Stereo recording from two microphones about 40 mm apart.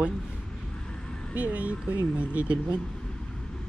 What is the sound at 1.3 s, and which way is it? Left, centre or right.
Speech, right.